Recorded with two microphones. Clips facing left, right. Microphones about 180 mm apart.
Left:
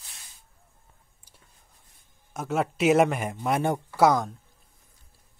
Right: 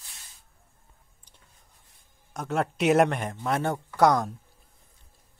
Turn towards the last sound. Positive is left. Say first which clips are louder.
# even
turn(degrees=0)  # may be behind; listen again after turning